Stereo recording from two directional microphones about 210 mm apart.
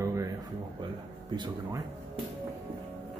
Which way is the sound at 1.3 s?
20° right (ahead or behind).